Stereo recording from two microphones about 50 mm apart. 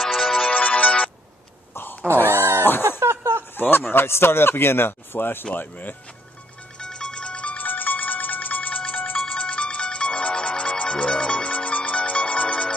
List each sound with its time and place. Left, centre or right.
0.0 s music: centre
0.5 s music: left
1.7 s fart: left
2.2 s a sound: right
3.0 s a sound: right
3.5 s speech: left
6.8 s music: centre
7.6 s music: left